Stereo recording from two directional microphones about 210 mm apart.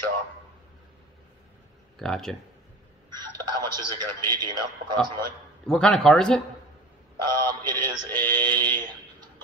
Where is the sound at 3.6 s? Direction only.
20° right (ahead or behind).